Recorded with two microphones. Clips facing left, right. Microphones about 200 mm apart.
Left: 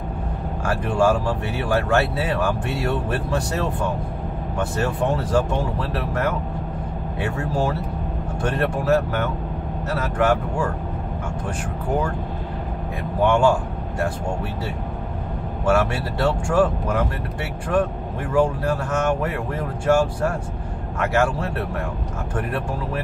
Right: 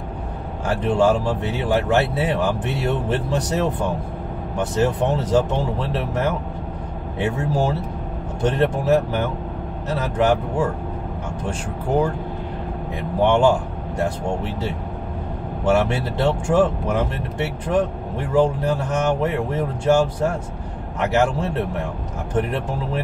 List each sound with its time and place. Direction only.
0.7 s speech: 20° right (ahead or behind)
13.2 s speech: 25° right (ahead or behind)